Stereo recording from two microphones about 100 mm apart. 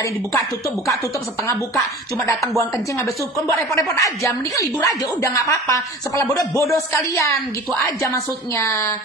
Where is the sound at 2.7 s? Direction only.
30° left (ahead or behind).